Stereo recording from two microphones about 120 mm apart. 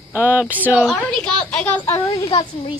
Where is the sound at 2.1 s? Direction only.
35° left (ahead or behind).